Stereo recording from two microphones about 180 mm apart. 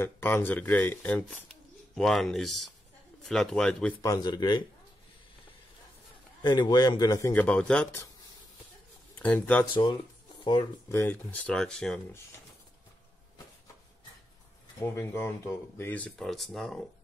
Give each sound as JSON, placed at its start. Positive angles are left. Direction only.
{"t": 0.0, "sound": "speech", "side_deg": 10}
{"t": 4.0, "sound": "speech", "side_deg": 20}
{"t": 6.4, "sound": "speech", "side_deg": 25}
{"t": 9.2, "sound": "speech", "side_deg": 10}
{"t": 10.4, "sound": "speech", "side_deg": 25}
{"t": 10.9, "sound": "speech", "side_deg": 15}
{"t": 14.8, "sound": "speech", "side_deg": 15}